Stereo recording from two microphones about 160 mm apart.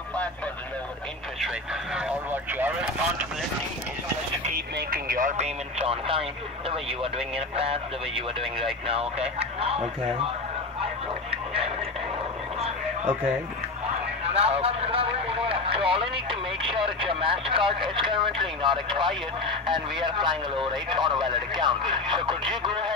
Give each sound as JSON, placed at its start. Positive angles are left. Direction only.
{"t": 2.0, "sound": "speech", "side_deg": -10}
{"t": 4.7, "sound": "speech", "side_deg": -65}
{"t": 12.5, "sound": "a sound", "side_deg": -40}
{"t": 14.2, "sound": "vehicle", "side_deg": -40}
{"t": 17.8, "sound": "speech", "side_deg": -30}
{"t": 19.4, "sound": "speech", "side_deg": -30}